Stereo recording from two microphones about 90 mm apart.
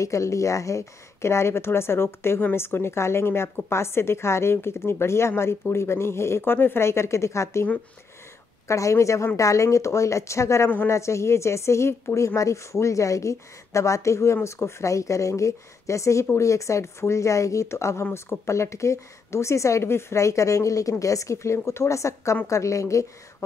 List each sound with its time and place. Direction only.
0.0 s a woman's voice: 35° left (ahead or behind)
8.6 s a woman's voice: 35° left (ahead or behind)